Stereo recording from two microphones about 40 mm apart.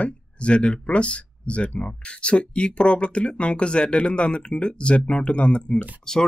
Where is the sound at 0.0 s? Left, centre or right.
Left.